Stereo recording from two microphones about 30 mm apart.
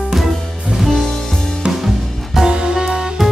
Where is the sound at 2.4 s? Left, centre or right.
Right.